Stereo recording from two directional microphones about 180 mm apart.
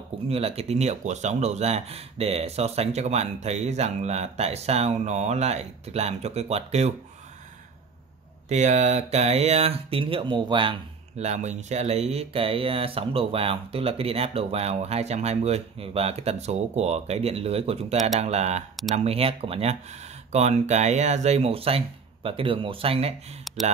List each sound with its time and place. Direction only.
0.3 s speech: 35° right (ahead or behind)
8.5 s speech: 40° right (ahead or behind)